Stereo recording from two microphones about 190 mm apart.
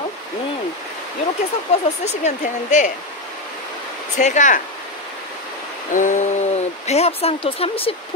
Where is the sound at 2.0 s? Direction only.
40° left (ahead or behind).